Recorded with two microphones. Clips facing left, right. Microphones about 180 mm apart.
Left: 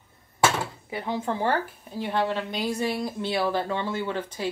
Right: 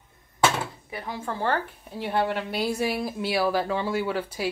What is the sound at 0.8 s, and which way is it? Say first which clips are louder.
Speech: left 4 dB; 25° left (ahead or behind).